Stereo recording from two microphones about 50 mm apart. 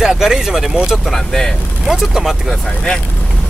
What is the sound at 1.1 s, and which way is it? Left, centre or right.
Speech, centre.